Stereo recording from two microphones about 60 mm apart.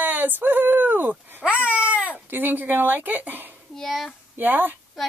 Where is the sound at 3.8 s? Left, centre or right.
Centre.